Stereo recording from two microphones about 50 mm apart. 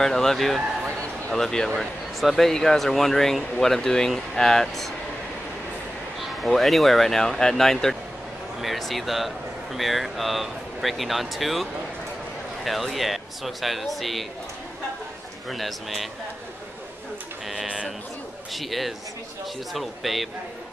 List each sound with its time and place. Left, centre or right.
0.0 s speech: centre
0.8 s a sound: centre
1.8 s speech: centre
6.4 s speech: centre
15.5 s speech: centre
18.5 s speech: centre